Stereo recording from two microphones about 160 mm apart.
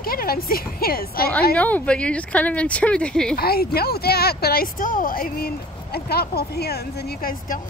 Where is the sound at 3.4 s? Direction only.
75° left (ahead or behind).